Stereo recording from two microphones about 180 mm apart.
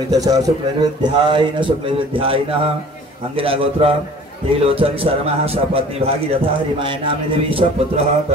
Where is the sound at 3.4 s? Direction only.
30° right (ahead or behind).